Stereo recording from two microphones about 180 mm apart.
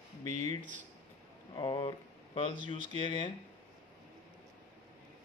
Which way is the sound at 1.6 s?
30° left (ahead or behind).